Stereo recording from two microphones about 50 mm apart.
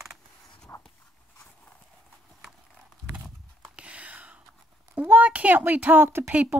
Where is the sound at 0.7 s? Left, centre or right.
Left.